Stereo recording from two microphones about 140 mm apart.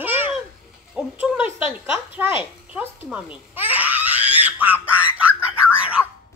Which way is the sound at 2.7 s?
10° right (ahead or behind).